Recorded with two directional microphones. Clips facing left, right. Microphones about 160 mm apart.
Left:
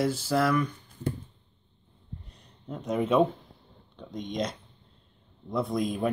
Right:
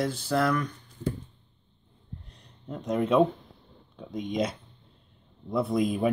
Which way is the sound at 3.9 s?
5° right (ahead or behind).